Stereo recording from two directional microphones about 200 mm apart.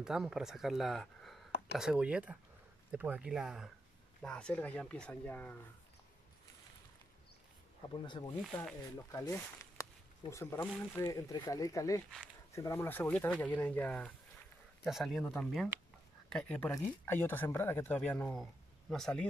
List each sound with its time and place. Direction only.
0.0 s speech: centre (ahead or behind)
7.9 s speech: 25° left (ahead or behind)
8.4 s speech: centre (ahead or behind)